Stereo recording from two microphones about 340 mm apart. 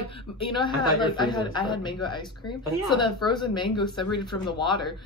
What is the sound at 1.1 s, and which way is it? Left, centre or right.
Speech, centre.